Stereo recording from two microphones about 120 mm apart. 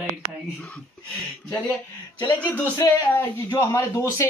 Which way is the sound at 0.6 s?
10° left (ahead or behind).